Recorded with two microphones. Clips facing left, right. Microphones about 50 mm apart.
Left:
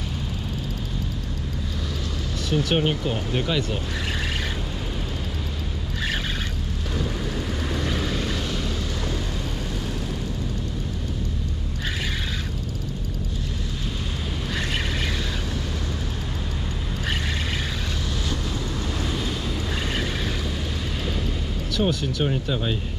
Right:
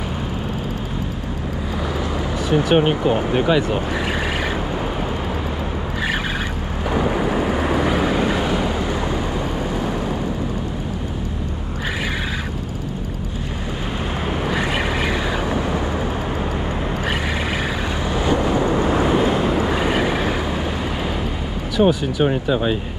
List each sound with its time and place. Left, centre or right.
2.5 s speech: centre
6.9 s vehicle: right
14.5 s vehicle: right
18.1 s vehicle: right
21.7 s speech: centre